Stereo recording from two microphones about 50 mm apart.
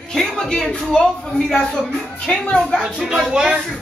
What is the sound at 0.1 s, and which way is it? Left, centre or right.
Speech, centre.